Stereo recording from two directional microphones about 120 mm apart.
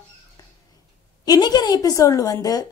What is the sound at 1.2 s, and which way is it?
A woman's voice, 35° left (ahead or behind).